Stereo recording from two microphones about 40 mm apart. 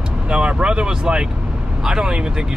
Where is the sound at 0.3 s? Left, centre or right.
Right.